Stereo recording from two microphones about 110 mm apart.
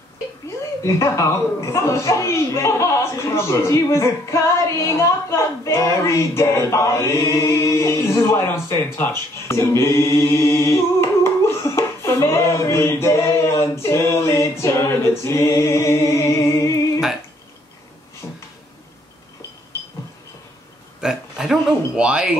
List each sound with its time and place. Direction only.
0.8 s a man's voice: 25° left (ahead or behind)
8.9 s mantra: 20° left (ahead or behind)
18.2 s a sound: 10° left (ahead or behind)
21.0 s speech: 5° right (ahead or behind)